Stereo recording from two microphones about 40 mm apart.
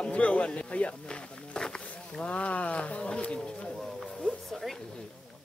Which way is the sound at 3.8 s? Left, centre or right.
Centre.